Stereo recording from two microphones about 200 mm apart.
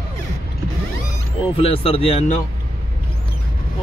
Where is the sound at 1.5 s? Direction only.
30° left (ahead or behind).